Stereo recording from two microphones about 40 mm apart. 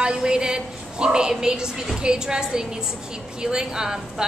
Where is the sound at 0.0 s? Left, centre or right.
Right.